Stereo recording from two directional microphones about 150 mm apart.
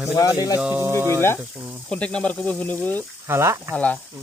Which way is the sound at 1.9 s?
5° left (ahead or behind).